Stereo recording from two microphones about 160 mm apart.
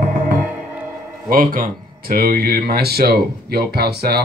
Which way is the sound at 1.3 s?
60° right (ahead or behind).